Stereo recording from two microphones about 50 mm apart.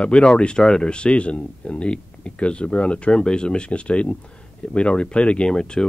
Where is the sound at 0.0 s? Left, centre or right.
Centre.